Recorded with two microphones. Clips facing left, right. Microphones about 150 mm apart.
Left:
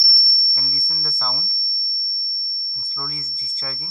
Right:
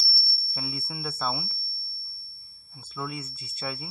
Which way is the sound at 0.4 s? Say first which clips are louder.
Right 5 dB; 15° right (ahead or behind).